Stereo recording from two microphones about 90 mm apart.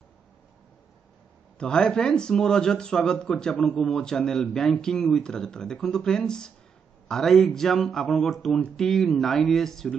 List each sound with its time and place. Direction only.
1.6 s speech: 10° left (ahead or behind)